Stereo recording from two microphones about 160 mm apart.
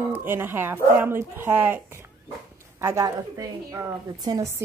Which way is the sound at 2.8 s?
20° right (ahead or behind).